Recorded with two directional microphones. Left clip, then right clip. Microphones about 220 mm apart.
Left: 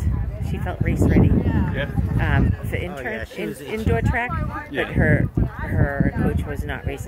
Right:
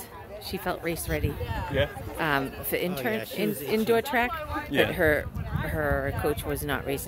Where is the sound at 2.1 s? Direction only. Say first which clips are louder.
Left 1 dB; 20° right (ahead or behind).